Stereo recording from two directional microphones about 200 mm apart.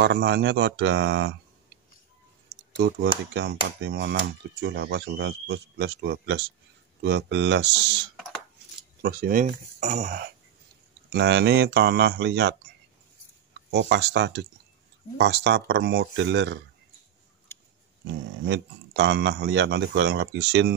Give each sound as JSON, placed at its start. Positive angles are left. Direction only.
{"t": 0.0, "sound": "cutlery", "side_deg": -60}
{"t": 2.5, "sound": "clicking", "side_deg": -55}
{"t": 3.3, "sound": "cutlery", "side_deg": -60}
{"t": 9.0, "sound": "speech", "side_deg": -50}
{"t": 11.1, "sound": "cutlery", "side_deg": -55}
{"t": 13.7, "sound": "cutlery", "side_deg": -60}
{"t": 18.4, "sound": "cutlery", "side_deg": -60}